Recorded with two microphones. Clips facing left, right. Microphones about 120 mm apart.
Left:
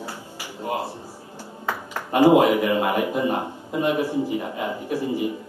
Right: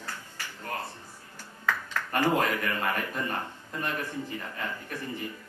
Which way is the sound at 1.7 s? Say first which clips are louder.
Left 5 dB; 15° left (ahead or behind).